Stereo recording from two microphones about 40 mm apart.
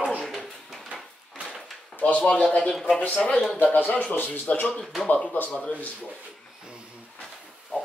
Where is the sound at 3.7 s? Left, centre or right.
Left.